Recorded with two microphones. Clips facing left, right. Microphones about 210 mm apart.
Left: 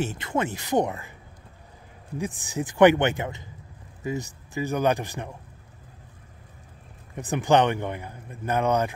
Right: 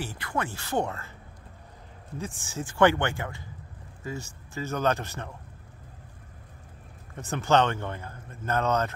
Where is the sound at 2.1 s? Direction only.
15° left (ahead or behind).